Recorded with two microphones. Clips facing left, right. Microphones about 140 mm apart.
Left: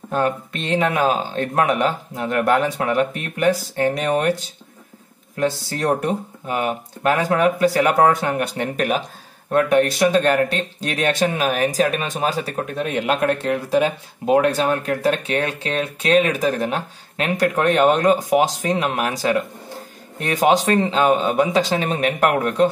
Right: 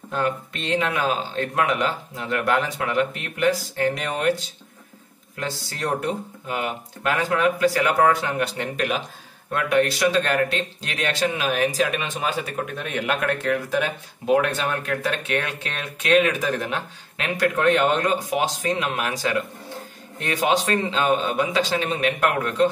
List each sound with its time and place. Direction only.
0.1 s speech: 45° left (ahead or behind)
5.4 s speech: 45° left (ahead or behind)